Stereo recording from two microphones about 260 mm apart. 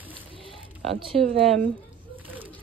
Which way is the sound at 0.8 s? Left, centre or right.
Right.